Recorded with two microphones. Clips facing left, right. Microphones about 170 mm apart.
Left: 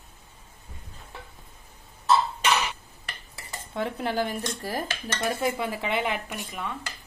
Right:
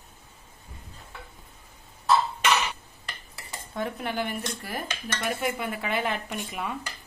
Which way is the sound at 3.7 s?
30° left (ahead or behind).